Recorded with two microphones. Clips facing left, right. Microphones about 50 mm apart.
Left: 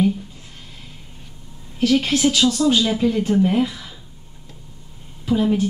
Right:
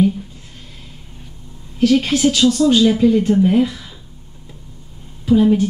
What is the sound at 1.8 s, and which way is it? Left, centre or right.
A woman's voice, centre.